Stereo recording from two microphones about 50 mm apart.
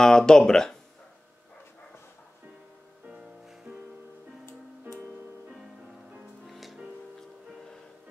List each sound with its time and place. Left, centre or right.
0.0 s speech: centre
3.1 s music: centre
6.4 s music: centre